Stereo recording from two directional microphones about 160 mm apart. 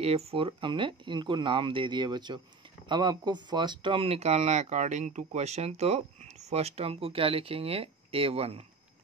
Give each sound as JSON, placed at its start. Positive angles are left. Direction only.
{"t": 0.0, "sound": "speech", "side_deg": -40}